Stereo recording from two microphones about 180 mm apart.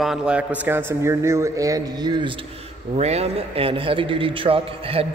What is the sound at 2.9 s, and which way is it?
A man's voice, 35° right (ahead or behind).